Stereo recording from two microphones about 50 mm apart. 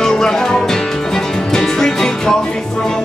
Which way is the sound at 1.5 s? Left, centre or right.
Centre.